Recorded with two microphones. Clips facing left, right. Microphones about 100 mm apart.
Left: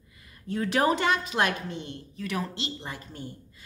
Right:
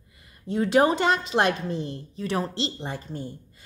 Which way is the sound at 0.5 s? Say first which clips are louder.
Right 4 dB; 25° right (ahead or behind).